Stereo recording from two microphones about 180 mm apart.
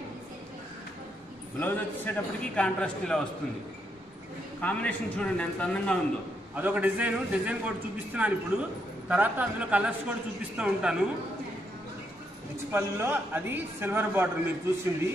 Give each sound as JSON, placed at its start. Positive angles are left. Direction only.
{"t": 1.6, "sound": "a man's voice", "side_deg": 10}
{"t": 4.6, "sound": "a man's voice", "side_deg": 10}
{"t": 6.5, "sound": "a man's voice", "side_deg": -10}
{"t": 12.7, "sound": "a man's voice", "side_deg": -10}